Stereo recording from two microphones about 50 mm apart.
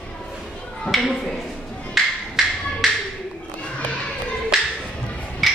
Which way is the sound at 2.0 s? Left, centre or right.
Centre.